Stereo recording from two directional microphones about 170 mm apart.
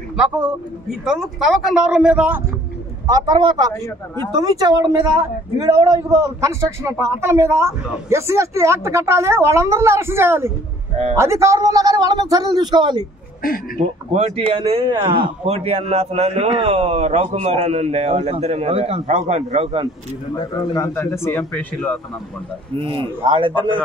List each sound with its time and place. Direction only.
0.2 s a man's voice: 5° right (ahead or behind)
3.1 s a man's voice: 25° right (ahead or behind)
13.7 s speech: 35° right (ahead or behind)
20.3 s speech: 30° left (ahead or behind)
20.8 s a man's voice: 15° left (ahead or behind)
22.8 s speech: 30° right (ahead or behind)